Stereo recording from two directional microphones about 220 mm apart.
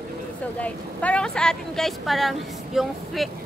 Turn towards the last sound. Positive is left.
turn(degrees=0)  # may be behind; listen again after turning